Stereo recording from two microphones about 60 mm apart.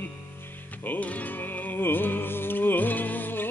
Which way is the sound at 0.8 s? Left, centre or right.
Left.